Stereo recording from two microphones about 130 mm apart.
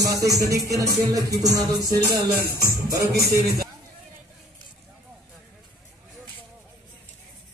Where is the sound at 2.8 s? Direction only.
25° right (ahead or behind).